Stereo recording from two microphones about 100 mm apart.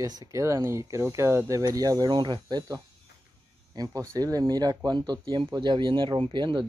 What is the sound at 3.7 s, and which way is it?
Speech, 40° right (ahead or behind).